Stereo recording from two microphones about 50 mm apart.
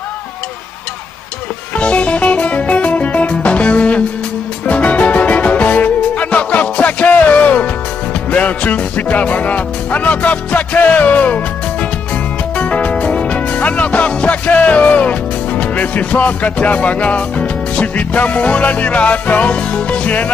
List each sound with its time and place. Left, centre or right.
1.8 s music: left
12.5 s speech: left